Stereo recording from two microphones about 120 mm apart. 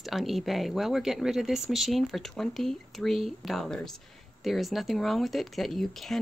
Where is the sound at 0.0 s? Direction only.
Centre (ahead or behind).